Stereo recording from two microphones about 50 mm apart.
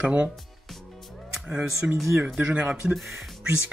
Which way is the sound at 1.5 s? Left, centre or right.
Right.